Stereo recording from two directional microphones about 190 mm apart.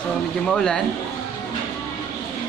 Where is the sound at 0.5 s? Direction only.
5° left (ahead or behind).